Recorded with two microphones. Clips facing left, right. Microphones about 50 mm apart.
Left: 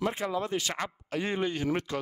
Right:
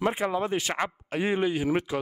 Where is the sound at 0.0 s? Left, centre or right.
Right.